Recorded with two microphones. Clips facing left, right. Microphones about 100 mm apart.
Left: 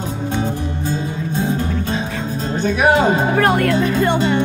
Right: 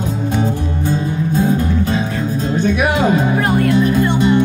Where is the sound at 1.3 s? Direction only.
25° left (ahead or behind).